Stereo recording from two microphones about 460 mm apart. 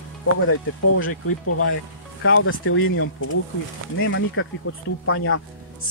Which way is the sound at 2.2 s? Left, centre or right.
Left.